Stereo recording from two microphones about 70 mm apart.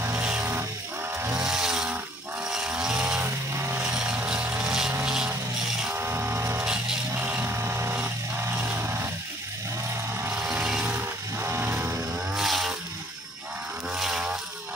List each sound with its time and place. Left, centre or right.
0.1 s music: centre
1.3 s chainsaw: centre
2.4 s vehicle: centre
3.5 s vehicle: right
3.8 s vehicle: centre
5.9 s music: right
6.6 s music: centre
7.2 s a sound: centre
7.4 s vehicle: right
8.7 s a sound: right
10.3 s music: centre
10.9 s music: right
12.4 s chainsaw: centre
13.9 s a sound: centre